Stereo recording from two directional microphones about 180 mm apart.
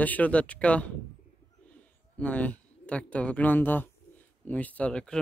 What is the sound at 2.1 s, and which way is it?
Speech, 10° left (ahead or behind).